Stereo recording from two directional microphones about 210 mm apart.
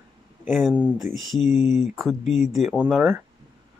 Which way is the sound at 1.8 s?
Centre (ahead or behind).